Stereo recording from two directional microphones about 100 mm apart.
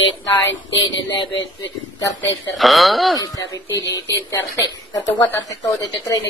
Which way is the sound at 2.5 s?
Centre (ahead or behind).